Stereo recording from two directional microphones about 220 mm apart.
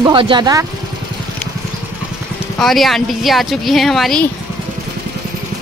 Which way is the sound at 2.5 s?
Centre (ahead or behind).